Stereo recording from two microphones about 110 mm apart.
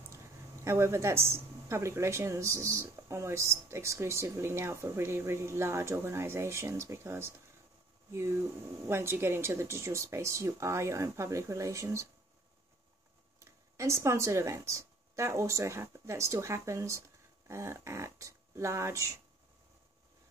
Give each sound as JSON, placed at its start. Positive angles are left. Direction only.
{"t": 0.7, "sound": "a woman's voice", "side_deg": -25}
{"t": 13.4, "sound": "a woman's voice", "side_deg": -25}